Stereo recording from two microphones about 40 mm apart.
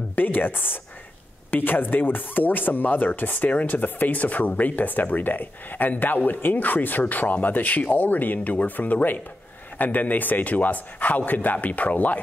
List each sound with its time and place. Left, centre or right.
0.1 s speech: left